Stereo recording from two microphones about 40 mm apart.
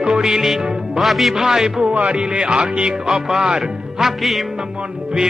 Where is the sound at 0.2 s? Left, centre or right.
Centre.